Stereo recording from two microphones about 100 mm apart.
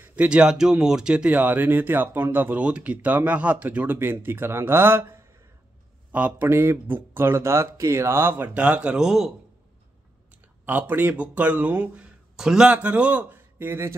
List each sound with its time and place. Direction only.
0.0 s speech: 15° right (ahead or behind)
10.6 s speech: 15° right (ahead or behind)